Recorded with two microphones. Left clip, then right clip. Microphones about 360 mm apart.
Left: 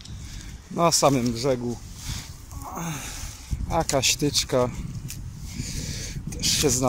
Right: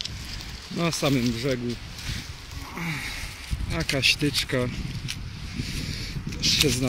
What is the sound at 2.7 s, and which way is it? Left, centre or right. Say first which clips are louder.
Speech: right 3 dB; centre.